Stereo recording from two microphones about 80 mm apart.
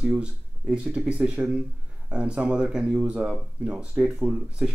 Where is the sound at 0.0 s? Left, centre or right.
Centre.